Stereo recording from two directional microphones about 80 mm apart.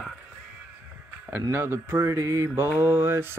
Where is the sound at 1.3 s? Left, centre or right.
Right.